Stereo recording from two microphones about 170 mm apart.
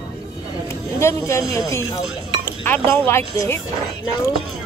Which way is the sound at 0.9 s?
15° left (ahead or behind).